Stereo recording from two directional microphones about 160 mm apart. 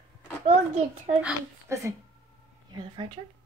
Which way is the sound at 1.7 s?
20° right (ahead or behind).